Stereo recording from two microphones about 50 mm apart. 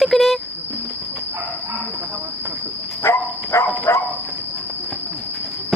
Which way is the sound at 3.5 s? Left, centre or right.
Left.